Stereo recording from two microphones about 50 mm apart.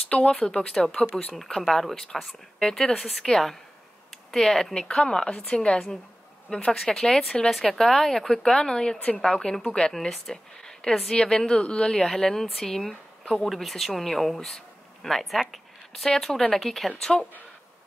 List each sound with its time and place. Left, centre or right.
0.3 s a woman's voice: centre
4.8 s a woman's voice: centre